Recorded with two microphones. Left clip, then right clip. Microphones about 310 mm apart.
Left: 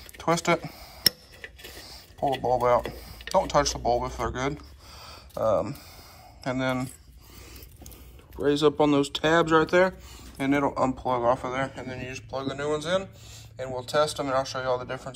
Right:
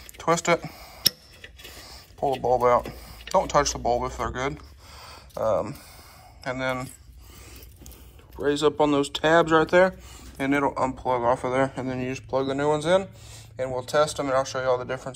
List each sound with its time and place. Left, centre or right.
0.2 s speech: centre
1.7 s a sound: centre
3.1 s speech: centre
8.4 s speech: centre